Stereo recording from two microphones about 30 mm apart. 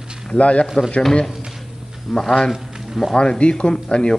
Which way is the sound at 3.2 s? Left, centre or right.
Left.